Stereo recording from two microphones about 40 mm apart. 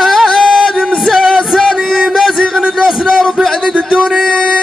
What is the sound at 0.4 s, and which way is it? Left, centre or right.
Music, centre.